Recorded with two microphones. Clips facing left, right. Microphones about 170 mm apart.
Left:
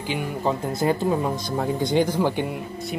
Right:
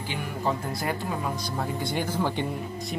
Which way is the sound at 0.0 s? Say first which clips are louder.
Left 4 dB; 20° left (ahead or behind).